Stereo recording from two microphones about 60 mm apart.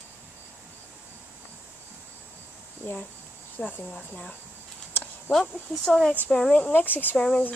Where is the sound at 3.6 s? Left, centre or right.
Left.